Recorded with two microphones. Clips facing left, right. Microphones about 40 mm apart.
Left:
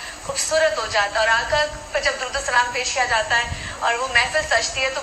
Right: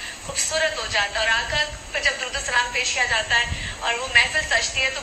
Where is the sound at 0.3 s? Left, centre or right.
Right.